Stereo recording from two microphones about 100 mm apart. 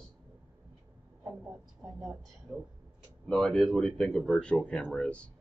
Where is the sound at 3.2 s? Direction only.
5° left (ahead or behind).